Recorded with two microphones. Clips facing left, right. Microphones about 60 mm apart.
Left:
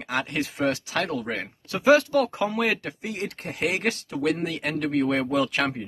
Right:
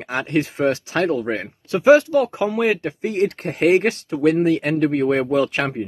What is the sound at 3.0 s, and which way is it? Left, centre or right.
Speech, right.